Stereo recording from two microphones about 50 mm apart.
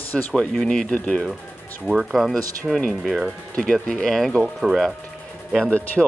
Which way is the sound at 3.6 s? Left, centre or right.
Centre.